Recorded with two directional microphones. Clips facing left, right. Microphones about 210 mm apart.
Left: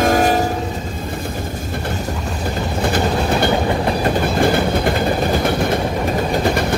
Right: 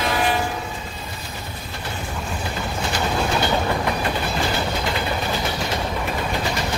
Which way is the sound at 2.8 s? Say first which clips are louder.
Left 5 dB; 55° left (ahead or behind).